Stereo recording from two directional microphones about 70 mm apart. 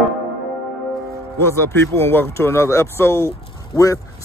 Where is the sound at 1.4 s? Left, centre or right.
Left.